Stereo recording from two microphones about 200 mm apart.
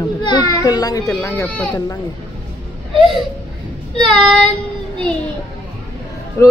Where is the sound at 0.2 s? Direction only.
20° left (ahead or behind).